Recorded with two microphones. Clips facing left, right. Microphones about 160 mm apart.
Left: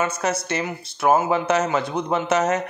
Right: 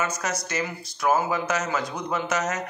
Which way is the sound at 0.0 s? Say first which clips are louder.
Left 5 dB; 30° left (ahead or behind).